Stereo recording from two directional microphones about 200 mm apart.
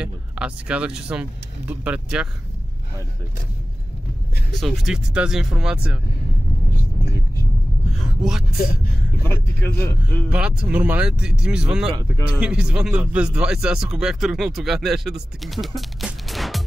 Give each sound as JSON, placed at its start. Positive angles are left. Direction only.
{"t": 0.0, "sound": "a man's voice", "side_deg": -5}
{"t": 4.5, "sound": "a man's voice", "side_deg": 0}
{"t": 8.2, "sound": "speech", "side_deg": -5}
{"t": 9.2, "sound": "a man's voice", "side_deg": 10}
{"t": 10.3, "sound": "a man's voice", "side_deg": -5}